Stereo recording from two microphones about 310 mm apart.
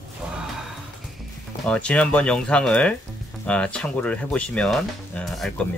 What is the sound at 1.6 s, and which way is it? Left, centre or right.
Speech, centre.